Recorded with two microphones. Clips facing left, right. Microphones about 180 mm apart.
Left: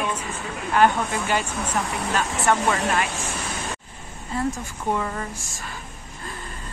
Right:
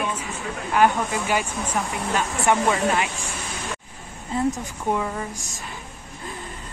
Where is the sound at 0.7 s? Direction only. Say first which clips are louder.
Even; 10° right (ahead or behind).